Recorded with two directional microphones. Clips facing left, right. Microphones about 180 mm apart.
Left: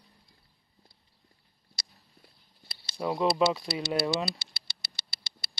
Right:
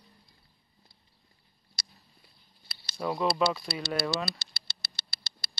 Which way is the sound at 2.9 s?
15° left (ahead or behind).